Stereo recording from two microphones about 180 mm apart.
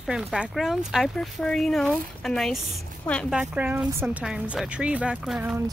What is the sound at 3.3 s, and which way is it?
Speech, 10° right (ahead or behind).